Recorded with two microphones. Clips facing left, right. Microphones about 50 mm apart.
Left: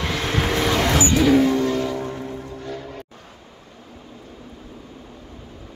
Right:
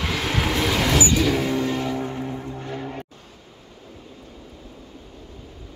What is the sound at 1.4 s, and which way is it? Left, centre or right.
Vehicle, centre.